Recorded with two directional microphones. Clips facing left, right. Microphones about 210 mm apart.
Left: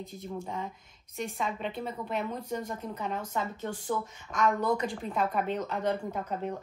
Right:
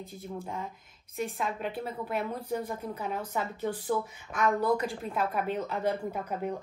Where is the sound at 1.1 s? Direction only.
Centre (ahead or behind).